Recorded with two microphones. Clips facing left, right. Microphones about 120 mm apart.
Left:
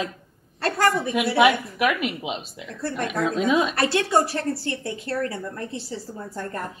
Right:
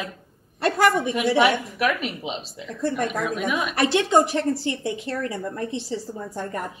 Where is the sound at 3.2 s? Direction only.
25° left (ahead or behind).